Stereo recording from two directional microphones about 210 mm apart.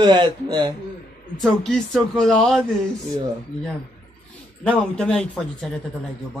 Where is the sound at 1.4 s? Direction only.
5° left (ahead or behind).